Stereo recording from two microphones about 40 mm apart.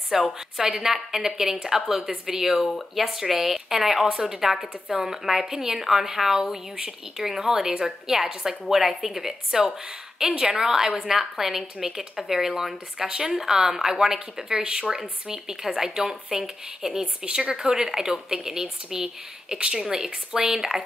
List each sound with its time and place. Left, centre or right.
0.1 s speech: centre